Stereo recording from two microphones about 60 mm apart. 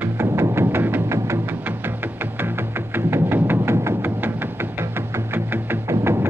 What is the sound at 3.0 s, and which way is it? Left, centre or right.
Music, right.